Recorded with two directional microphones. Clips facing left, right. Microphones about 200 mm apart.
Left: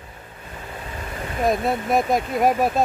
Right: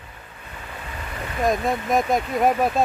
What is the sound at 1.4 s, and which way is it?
Speech, centre (ahead or behind).